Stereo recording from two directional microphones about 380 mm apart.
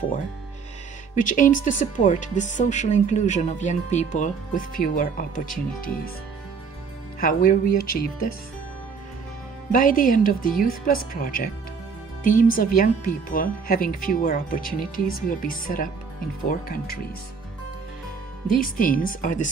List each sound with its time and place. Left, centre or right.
1.1 s speech: centre
7.2 s speech: left
9.7 s speech: left
18.5 s speech: left